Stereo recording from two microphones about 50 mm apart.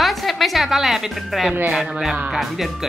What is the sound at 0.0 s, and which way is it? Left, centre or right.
Music, centre.